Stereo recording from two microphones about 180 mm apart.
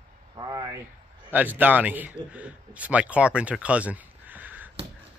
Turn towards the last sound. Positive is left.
turn(degrees=-10)  # may be behind; listen again after turning